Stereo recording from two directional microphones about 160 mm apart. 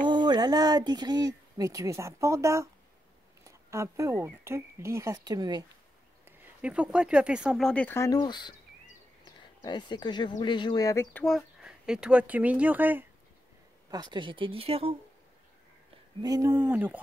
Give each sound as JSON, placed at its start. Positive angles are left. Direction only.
{"t": 0.0, "sound": "speech", "side_deg": -30}
{"t": 6.2, "sound": "speech", "side_deg": -10}
{"t": 11.2, "sound": "speech", "side_deg": 0}
{"t": 13.8, "sound": "speech", "side_deg": -25}
{"t": 16.2, "sound": "speech", "side_deg": -20}